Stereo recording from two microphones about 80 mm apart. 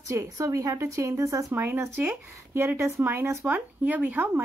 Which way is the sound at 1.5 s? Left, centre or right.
Right.